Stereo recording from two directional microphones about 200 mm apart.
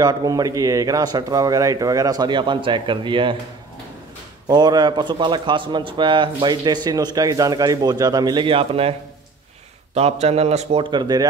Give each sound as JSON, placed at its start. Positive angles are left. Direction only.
{"t": 0.0, "sound": "a man's voice", "side_deg": -20}
{"t": 4.5, "sound": "a man's voice", "side_deg": -20}
{"t": 9.9, "sound": "a man's voice", "side_deg": -30}